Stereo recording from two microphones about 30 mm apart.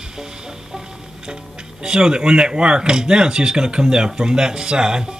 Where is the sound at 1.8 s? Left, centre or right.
Right.